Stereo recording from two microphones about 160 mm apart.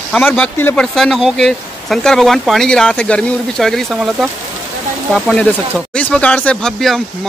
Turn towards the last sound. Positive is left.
turn(degrees=5)  # may be behind; listen again after turning